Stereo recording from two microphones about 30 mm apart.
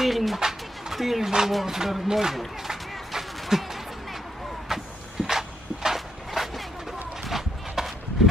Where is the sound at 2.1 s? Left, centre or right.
Centre.